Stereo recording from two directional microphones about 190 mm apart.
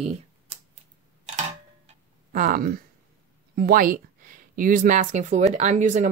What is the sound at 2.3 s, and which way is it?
Speech, 45° right (ahead or behind).